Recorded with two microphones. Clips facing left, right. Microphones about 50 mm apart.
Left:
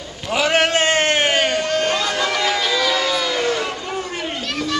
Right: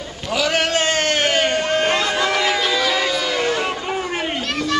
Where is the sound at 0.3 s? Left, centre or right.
Left.